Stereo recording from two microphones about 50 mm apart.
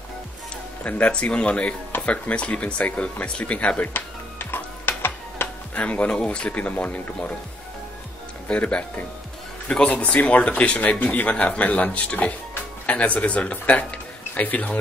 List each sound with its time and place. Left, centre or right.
0.8 s speech: left
3.8 s music: left
5.8 s speech: left
8.5 s speech: left
10.0 s speech: left